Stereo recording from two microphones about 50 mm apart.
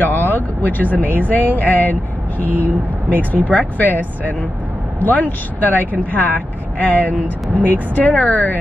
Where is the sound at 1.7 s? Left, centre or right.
Left.